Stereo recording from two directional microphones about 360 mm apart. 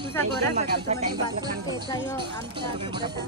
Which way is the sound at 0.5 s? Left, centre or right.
Centre.